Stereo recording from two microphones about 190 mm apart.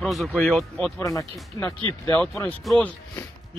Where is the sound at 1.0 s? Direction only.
15° left (ahead or behind).